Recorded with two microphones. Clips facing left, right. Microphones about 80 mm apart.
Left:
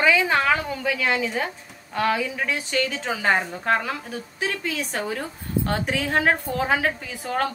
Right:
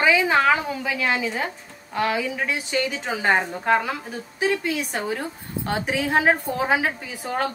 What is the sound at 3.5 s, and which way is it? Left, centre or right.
A woman's voice, centre.